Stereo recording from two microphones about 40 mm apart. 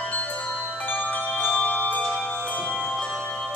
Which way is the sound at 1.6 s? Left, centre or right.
Left.